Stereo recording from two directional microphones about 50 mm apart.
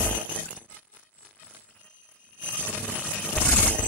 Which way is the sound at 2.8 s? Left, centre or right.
Left.